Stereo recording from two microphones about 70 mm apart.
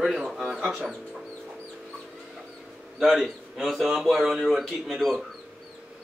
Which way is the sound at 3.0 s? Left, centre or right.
Centre.